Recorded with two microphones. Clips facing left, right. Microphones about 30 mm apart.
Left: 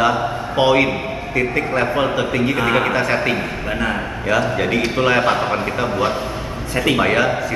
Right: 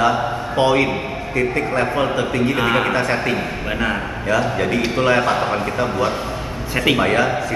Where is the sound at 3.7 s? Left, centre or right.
Centre.